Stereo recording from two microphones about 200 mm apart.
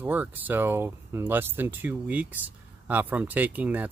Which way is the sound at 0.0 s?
10° right (ahead or behind).